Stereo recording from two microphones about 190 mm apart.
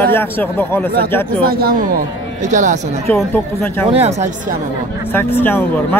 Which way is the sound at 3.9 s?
35° right (ahead or behind).